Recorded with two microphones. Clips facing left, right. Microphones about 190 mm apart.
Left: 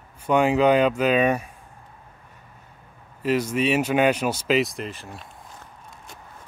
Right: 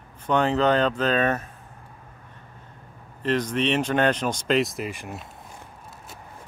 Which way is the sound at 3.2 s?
10° left (ahead or behind).